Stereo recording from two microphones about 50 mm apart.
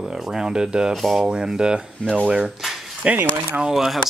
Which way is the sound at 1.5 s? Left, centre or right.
Centre.